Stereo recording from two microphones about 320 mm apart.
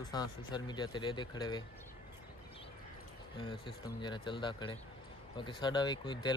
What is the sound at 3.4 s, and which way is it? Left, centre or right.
Speech, centre.